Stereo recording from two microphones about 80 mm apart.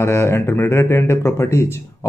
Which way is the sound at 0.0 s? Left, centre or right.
Left.